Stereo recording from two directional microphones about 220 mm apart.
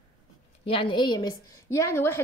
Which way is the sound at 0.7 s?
25° left (ahead or behind).